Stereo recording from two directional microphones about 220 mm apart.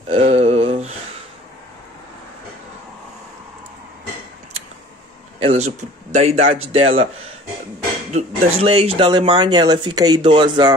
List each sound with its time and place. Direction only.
0.1 s a sound: 25° right (ahead or behind)
5.4 s speech: 30° right (ahead or behind)
8.1 s speech: 25° right (ahead or behind)